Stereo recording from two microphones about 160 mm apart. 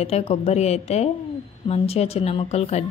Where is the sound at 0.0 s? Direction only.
40° left (ahead or behind).